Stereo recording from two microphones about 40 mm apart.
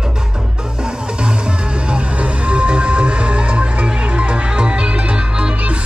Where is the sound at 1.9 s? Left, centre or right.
Right.